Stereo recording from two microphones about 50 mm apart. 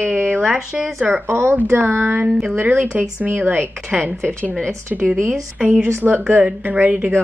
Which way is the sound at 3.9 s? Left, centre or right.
Right.